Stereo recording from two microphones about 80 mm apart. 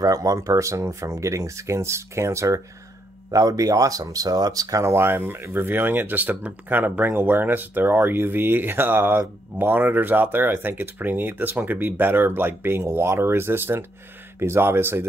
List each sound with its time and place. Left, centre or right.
0.0 s speech: right
4.9 s speech: right